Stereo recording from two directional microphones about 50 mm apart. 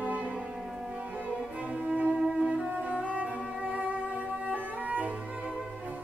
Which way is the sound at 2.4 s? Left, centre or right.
Centre.